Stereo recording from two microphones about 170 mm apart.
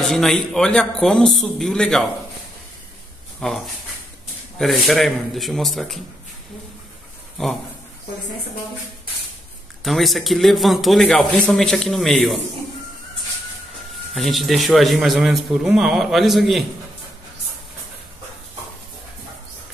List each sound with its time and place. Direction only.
0.0 s a man's voice: centre (ahead or behind)
3.3 s a man's voice: centre (ahead or behind)
9.8 s a man's voice: centre (ahead or behind)
14.1 s a man's voice: centre (ahead or behind)